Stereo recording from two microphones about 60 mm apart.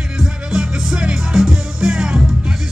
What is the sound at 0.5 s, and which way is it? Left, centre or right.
Music, centre.